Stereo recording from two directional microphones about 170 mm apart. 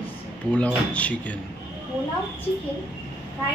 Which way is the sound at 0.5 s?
5° left (ahead or behind).